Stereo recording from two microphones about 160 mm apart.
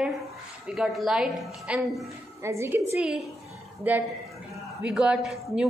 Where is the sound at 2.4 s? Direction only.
15° right (ahead or behind).